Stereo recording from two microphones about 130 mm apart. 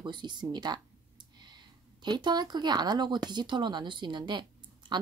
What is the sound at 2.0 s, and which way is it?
Speech, 35° right (ahead or behind).